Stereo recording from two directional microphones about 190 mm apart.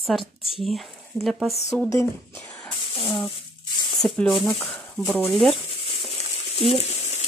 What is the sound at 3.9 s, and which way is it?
Speech, centre (ahead or behind).